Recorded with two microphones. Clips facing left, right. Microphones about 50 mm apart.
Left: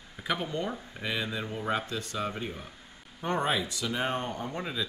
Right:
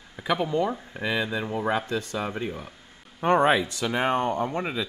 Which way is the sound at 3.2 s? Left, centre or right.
Right.